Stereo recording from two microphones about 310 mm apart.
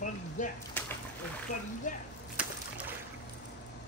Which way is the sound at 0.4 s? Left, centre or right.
Left.